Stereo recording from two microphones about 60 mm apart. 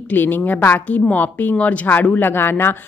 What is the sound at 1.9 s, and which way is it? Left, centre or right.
Speech, left.